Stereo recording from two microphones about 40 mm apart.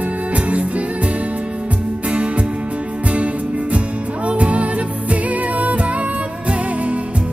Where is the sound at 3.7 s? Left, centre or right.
Right.